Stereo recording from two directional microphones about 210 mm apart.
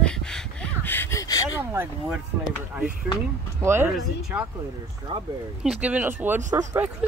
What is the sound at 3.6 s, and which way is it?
Speech, 10° right (ahead or behind).